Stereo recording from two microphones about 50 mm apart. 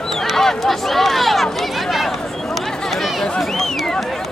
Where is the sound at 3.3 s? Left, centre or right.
Centre.